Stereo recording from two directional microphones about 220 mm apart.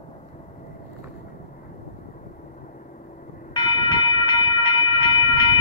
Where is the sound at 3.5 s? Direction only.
20° left (ahead or behind).